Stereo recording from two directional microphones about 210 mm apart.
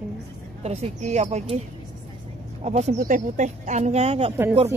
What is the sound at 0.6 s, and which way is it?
Speech, 30° right (ahead or behind).